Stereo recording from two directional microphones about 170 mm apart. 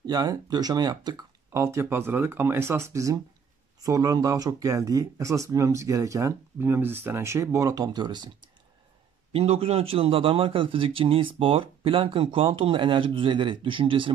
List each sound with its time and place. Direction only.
0.0 s speech: 20° right (ahead or behind)
9.3 s a man's voice: 35° right (ahead or behind)